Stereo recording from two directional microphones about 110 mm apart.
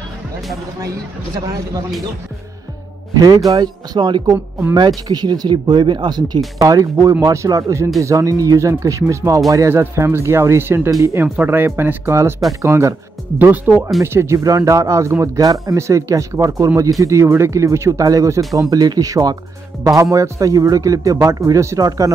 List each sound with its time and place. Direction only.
3.2 s speech: 30° right (ahead or behind)
18.4 s speech: centre (ahead or behind)
18.7 s speech: 35° right (ahead or behind)